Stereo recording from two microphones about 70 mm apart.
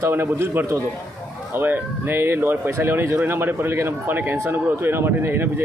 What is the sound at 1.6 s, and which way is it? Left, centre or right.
A man's voice, right.